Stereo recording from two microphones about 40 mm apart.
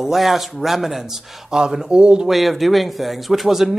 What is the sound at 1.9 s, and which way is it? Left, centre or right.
Speech, right.